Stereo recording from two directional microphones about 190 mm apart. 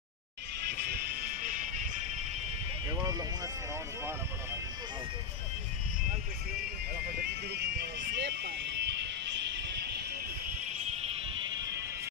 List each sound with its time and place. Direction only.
0.7 s music: 50° right (ahead or behind)
2.9 s music: 20° right (ahead or behind)
7.2 s music: 60° right (ahead or behind)
10.6 s music: 35° right (ahead or behind)